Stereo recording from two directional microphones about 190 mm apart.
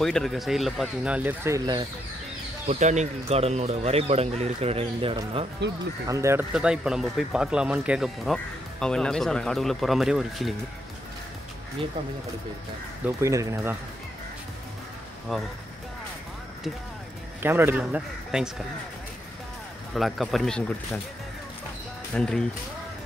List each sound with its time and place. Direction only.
0.0 s speech: centre (ahead or behind); by 1.9 s 15° right (ahead or behind)
2.7 s speech: 35° right (ahead or behind)
6.0 s speech: 15° right (ahead or behind)
6.5 s speech: 5° right (ahead or behind)
13.0 s speech: 15° right (ahead or behind)
15.3 s speech: centre (ahead or behind)
17.4 s speech: 10° right (ahead or behind)
19.9 s speech: centre (ahead or behind)
22.1 s speech: 5° left (ahead or behind)